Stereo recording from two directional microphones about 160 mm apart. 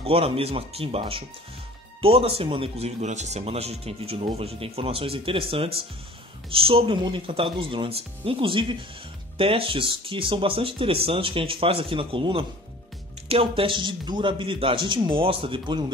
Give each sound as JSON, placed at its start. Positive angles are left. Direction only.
{"t": 0.0, "sound": "speech", "side_deg": -35}